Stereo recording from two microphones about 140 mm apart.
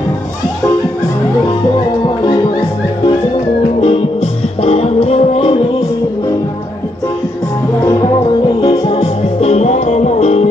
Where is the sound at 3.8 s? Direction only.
45° left (ahead or behind).